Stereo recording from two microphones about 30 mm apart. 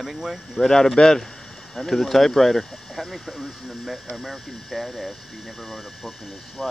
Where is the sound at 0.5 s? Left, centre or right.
Centre.